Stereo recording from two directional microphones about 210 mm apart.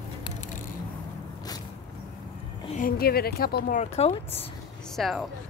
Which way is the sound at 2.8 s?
45° left (ahead or behind).